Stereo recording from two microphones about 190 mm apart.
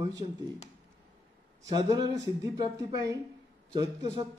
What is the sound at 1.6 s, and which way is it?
A man's voice, 20° right (ahead or behind).